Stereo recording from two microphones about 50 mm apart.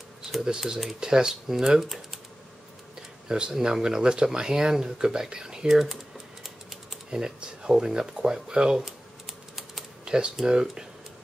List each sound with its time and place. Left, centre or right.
0.2 s speech: centre
3.3 s speech: centre
7.1 s speech: centre
10.0 s speech: centre